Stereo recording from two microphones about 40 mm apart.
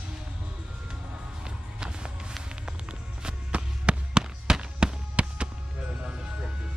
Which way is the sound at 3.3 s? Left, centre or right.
Right.